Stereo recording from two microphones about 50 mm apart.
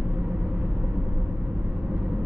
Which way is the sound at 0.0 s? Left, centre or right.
Centre.